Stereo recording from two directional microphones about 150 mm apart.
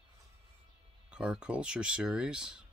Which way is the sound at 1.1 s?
5° right (ahead or behind).